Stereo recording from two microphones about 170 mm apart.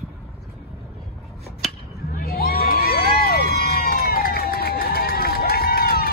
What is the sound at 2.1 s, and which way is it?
Crowd, 60° left (ahead or behind).